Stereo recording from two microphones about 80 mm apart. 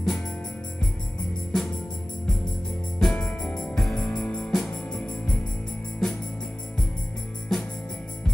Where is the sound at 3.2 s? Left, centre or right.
Centre.